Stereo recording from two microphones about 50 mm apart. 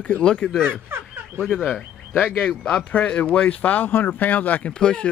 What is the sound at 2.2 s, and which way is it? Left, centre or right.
Speech, left.